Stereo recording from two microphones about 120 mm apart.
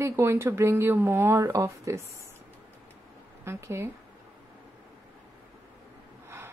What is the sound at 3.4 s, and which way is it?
Speech, 20° right (ahead or behind).